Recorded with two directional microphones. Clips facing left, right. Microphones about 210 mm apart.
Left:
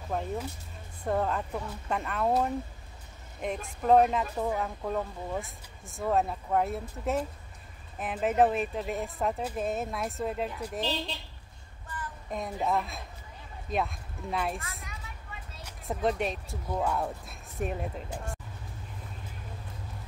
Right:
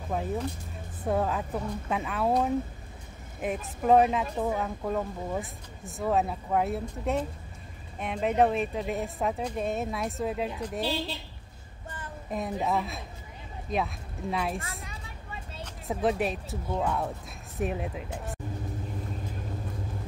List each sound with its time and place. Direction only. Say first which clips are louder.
0.1 s speech: right 2 dB; 5° right (ahead or behind)
12.3 s speech: right 1 dB; centre (ahead or behind)
14.6 s a woman's voice: right 3 dB; 30° right (ahead or behind)
15.9 s speech: right 2 dB; centre (ahead or behind)